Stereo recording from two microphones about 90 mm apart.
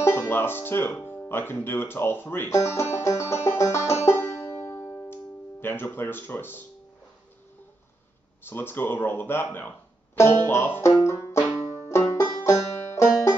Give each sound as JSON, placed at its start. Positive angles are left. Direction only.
{"t": 0.0, "sound": "music", "side_deg": 30}
{"t": 1.0, "sound": "speech", "side_deg": 20}
{"t": 2.5, "sound": "banjo", "side_deg": 30}
{"t": 8.5, "sound": "speech", "side_deg": 25}
{"t": 11.1, "sound": "banjo", "side_deg": 30}
{"t": 11.9, "sound": "music", "side_deg": 30}
{"t": 12.4, "sound": "banjo", "side_deg": 30}